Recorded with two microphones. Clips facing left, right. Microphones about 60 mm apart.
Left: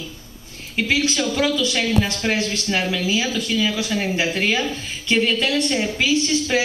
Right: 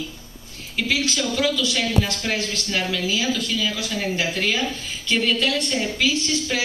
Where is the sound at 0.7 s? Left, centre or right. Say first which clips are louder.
Left 3 dB; left.